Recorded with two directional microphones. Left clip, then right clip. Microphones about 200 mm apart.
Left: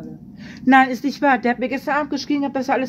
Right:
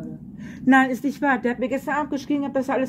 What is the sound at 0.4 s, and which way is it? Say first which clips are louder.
A woman's voice: left 4 dB; 20° left (ahead or behind).